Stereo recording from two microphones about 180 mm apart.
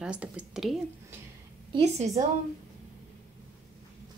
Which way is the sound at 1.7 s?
40° right (ahead or behind).